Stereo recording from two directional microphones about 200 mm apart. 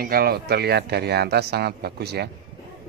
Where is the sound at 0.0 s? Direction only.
50° right (ahead or behind).